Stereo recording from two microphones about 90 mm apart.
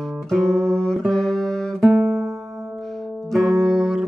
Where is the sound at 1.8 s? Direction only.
30° right (ahead or behind).